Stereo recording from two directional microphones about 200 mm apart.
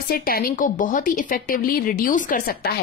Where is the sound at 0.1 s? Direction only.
45° left (ahead or behind).